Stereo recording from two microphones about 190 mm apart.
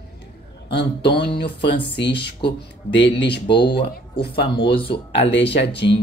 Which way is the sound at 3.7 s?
60° left (ahead or behind).